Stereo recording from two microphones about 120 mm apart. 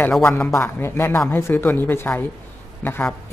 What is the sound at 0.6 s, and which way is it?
A man's voice, 20° left (ahead or behind).